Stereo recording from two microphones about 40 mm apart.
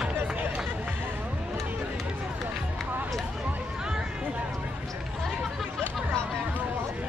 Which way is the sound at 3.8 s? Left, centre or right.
Centre.